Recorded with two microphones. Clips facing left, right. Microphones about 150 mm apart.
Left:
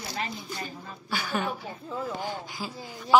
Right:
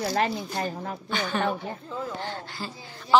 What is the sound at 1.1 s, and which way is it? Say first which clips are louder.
Speech: right 3 dB; 10° left (ahead or behind).